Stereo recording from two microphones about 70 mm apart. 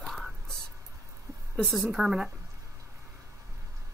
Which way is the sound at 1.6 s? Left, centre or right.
Centre.